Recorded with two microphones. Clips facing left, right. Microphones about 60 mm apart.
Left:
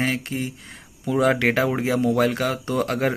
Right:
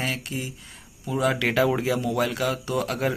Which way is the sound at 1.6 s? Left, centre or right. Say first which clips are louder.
Left 1 dB; left.